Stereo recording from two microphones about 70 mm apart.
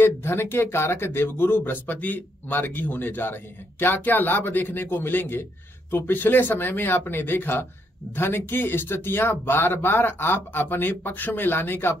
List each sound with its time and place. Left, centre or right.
0.0 s a man's voice: left